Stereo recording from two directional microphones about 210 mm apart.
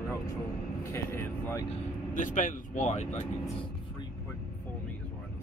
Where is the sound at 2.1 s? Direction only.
40° left (ahead or behind).